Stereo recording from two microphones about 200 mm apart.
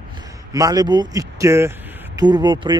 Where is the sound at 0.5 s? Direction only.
15° right (ahead or behind).